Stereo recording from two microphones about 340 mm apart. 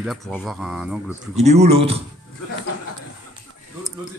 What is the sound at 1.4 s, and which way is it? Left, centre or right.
Speech, centre.